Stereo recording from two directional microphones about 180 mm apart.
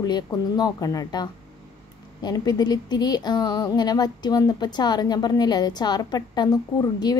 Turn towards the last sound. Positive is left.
turn(degrees=20)  # may be behind; listen again after turning